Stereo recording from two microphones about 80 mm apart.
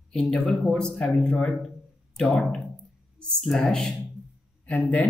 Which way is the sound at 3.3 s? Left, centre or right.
Centre.